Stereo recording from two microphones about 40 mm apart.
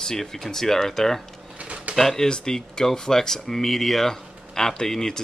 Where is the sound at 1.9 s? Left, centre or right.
Centre.